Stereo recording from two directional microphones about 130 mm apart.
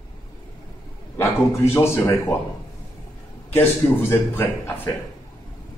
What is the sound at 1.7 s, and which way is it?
Speech, 20° left (ahead or behind).